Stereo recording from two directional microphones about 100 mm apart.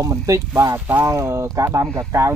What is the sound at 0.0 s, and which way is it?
Speech, 35° right (ahead or behind).